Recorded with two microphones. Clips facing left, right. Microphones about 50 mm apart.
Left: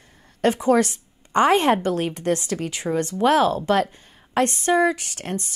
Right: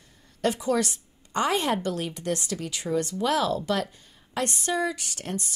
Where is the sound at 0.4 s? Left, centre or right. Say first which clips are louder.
Left 7 dB; left.